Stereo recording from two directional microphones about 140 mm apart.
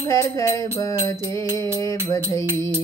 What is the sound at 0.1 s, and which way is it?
Music, 25° left (ahead or behind).